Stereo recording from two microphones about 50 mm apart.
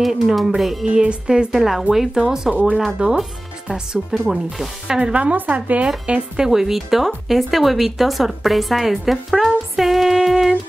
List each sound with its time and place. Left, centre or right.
0.0 s a woman's voice: centre
0.9 s speech: centre
1.5 s speech: centre; by 5.9 s right
5.9 s speech: centre
6.4 s a woman's voice: centre